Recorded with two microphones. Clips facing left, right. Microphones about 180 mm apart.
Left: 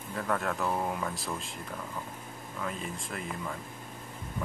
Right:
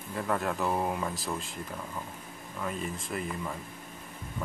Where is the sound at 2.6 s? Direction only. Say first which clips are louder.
Right 3 dB; 5° right (ahead or behind).